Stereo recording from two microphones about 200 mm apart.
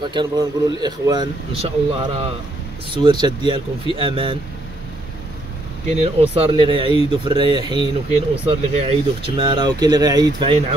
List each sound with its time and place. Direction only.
0.0 s speech: 25° right (ahead or behind)
6.0 s speech: 30° right (ahead or behind)